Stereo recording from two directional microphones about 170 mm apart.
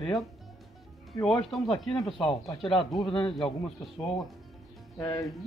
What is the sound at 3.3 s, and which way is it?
Speech, centre (ahead or behind).